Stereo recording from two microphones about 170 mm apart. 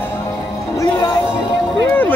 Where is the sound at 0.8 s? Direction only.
20° left (ahead or behind).